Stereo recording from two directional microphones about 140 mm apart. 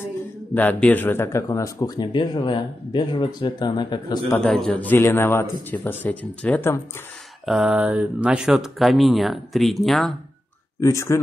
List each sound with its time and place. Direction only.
0.6 s speech: 10° left (ahead or behind); by 4.2 s 30° left (ahead or behind)
4.3 s a man's voice: 10° left (ahead or behind)
7.4 s speech: 5° right (ahead or behind)
10.8 s speech: 20° left (ahead or behind)